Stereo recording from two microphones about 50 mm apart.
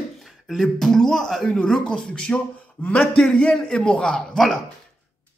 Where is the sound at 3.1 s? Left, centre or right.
Centre.